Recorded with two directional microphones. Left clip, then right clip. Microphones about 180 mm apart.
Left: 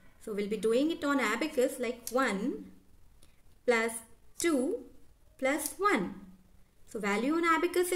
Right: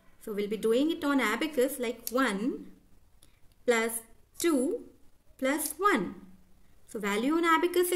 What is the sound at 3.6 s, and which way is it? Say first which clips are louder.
A woman's voice: right 1 dB; 20° right (ahead or behind).